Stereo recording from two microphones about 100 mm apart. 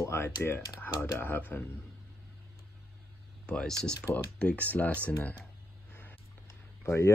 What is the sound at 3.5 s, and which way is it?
Speech, 10° left (ahead or behind).